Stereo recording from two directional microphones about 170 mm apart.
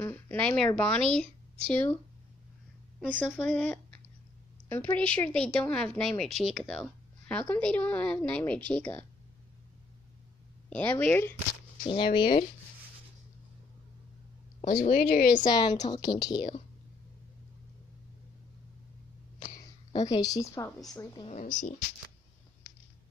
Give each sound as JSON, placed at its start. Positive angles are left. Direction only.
{"t": 0.0, "sound": "speech", "side_deg": 10}
{"t": 3.3, "sound": "speech", "side_deg": 5}
{"t": 10.7, "sound": "speech", "side_deg": 5}
{"t": 11.8, "sound": "speech", "side_deg": 30}
{"t": 14.7, "sound": "speech", "side_deg": 60}
{"t": 15.4, "sound": "speech", "side_deg": 25}
{"t": 19.9, "sound": "a woman's voice", "side_deg": 25}
{"t": 21.3, "sound": "speech", "side_deg": 50}